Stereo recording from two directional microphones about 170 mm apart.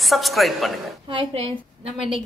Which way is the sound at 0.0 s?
Centre (ahead or behind).